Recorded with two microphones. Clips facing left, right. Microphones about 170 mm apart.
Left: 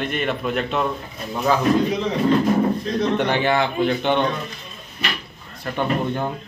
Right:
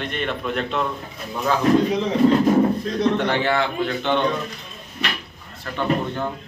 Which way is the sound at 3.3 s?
15° left (ahead or behind).